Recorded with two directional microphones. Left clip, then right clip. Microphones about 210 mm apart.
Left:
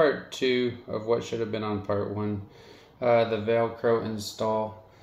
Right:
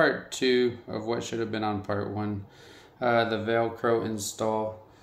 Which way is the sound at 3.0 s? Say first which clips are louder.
Left 2 dB; 20° right (ahead or behind).